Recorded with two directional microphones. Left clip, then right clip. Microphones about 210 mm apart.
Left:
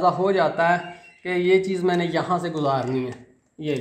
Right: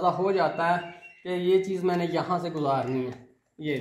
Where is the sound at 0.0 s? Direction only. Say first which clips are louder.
Left 4 dB; 30° left (ahead or behind).